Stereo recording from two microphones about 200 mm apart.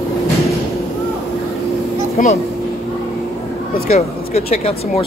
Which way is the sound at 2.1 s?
35° left (ahead or behind).